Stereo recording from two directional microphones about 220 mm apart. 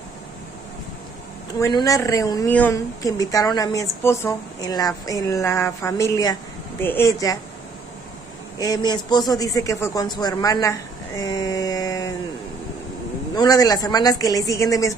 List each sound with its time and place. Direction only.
1.6 s a woman's voice: 15° left (ahead or behind)
8.5 s a woman's voice: 15° left (ahead or behind)
13.3 s a woman's voice: 15° left (ahead or behind)